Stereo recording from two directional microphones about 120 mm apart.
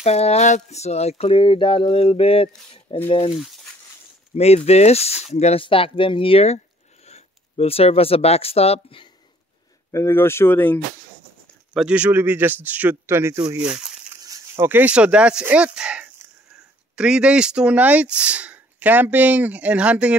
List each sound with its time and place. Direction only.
0.0 s speech: 60° left (ahead or behind); by 3.3 s 45° left (ahead or behind)
3.3 s a sound: centre (ahead or behind)
4.4 s speech: 60° left (ahead or behind)
5.6 s speech: 45° left (ahead or behind)
9.9 s speech: 20° left (ahead or behind)
11.7 s speech: 10° right (ahead or behind)
13.6 s speech: 5° right (ahead or behind)
14.2 s speech: 25° right (ahead or behind); by 20.2 s 10° right (ahead or behind)